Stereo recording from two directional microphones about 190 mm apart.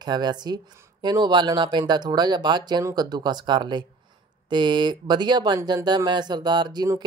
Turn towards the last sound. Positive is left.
turn(degrees=-20)  # may be behind; listen again after turning